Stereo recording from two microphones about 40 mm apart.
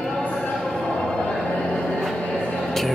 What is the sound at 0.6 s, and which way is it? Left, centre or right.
Music, centre.